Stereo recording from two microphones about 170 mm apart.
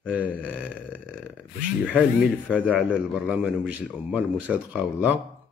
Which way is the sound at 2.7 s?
5° right (ahead or behind).